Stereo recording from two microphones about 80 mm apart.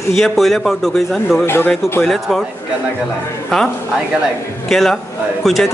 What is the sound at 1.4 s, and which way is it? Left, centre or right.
Speech, left.